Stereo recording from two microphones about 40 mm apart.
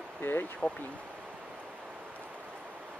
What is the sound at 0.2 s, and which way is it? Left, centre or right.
Speech, left.